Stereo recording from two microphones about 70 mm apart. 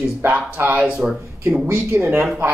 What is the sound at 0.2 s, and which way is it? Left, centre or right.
Speech, right.